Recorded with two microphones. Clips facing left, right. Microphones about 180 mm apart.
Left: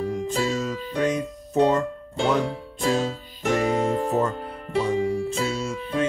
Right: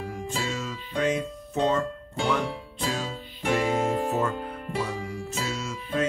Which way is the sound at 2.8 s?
45° left (ahead or behind).